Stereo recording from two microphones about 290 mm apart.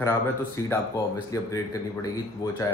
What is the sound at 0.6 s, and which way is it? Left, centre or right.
Speech, centre.